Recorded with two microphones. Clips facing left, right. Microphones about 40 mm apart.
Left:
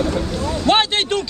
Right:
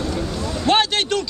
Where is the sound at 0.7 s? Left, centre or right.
Left.